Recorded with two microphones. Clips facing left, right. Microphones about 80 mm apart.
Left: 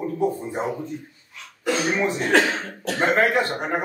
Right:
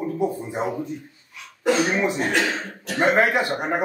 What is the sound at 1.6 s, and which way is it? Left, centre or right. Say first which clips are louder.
Speech: right 2 dB; centre.